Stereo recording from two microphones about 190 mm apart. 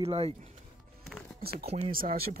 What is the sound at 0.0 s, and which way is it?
Speech, 30° right (ahead or behind).